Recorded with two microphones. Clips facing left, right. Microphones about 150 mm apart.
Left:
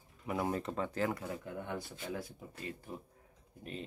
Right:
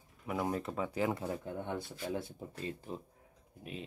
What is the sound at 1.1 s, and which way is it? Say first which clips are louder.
Speech: right 3 dB; 25° right (ahead or behind).